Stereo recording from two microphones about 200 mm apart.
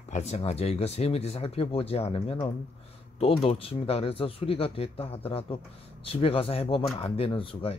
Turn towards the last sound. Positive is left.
turn(degrees=25)  # may be behind; listen again after turning